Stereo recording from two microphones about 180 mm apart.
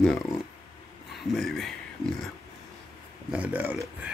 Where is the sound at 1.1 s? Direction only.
Centre (ahead or behind).